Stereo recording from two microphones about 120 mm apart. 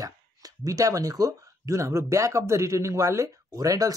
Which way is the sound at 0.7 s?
30° right (ahead or behind).